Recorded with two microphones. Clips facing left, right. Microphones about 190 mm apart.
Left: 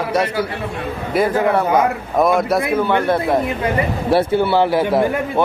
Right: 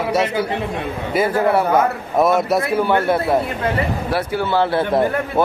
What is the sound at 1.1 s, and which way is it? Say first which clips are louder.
A man's voice: left 1 dB; centre (ahead or behind).